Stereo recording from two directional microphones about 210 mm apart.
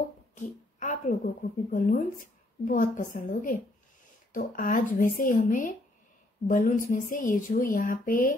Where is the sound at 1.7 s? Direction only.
40° left (ahead or behind).